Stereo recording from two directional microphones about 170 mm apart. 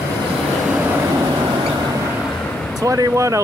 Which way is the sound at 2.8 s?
20° right (ahead or behind).